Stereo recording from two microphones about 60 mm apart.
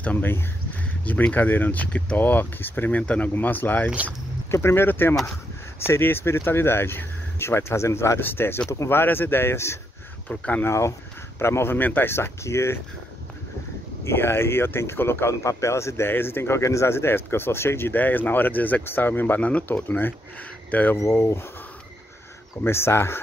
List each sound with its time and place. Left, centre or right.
0.0 s speech: left
2.1 s speech: left
3.0 s speech: left
3.3 s speech: left
4.5 s speech: left
8.2 s speech: left
10.3 s speech: left
10.7 s speech: left
12.1 s speech: left
14.0 s speech: left
21.2 s speech: left
22.7 s speech: left